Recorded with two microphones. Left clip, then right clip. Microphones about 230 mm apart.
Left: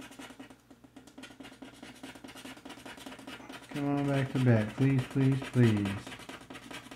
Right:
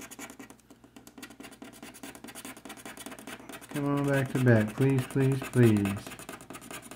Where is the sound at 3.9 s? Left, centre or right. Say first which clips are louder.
Right 3 dB; centre.